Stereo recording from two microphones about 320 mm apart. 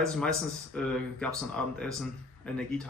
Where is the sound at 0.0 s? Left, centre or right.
Centre.